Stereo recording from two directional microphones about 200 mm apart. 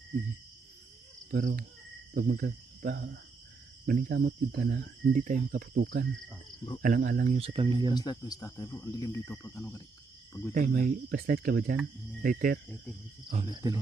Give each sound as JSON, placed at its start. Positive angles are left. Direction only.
{"t": 1.3, "sound": "speech", "side_deg": -45}
{"t": 7.9, "sound": "speech", "side_deg": 20}
{"t": 10.5, "sound": "speech", "side_deg": -40}
{"t": 13.3, "sound": "speech", "side_deg": -25}